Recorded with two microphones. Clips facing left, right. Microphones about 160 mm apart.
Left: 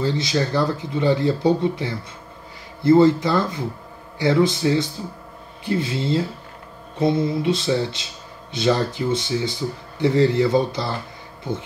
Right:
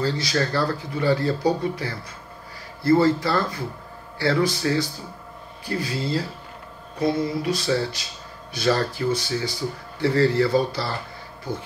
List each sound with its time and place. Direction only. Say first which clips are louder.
0.0 s speech: left 2 dB; 20° left (ahead or behind)